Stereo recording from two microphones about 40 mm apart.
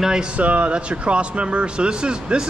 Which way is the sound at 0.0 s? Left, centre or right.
Centre.